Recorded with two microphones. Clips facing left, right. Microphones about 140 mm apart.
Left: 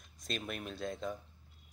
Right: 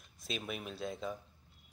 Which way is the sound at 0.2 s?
5° right (ahead or behind).